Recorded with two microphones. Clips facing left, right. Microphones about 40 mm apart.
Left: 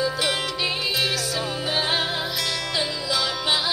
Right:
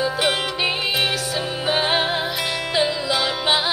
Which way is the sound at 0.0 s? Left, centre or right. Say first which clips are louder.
Right 3 dB; right.